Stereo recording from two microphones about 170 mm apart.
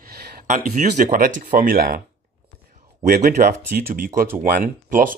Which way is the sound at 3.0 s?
55° right (ahead or behind).